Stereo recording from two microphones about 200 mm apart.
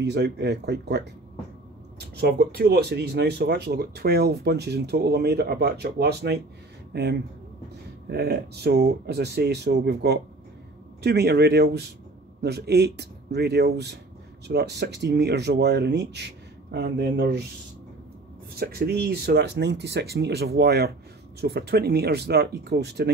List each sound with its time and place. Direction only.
0.0 s speech: 55° right (ahead or behind)
18.5 s speech: 50° right (ahead or behind)